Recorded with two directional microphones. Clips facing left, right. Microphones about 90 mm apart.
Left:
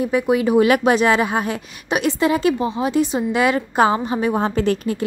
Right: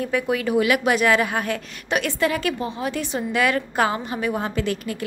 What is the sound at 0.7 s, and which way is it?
A woman's voice, 30° left (ahead or behind).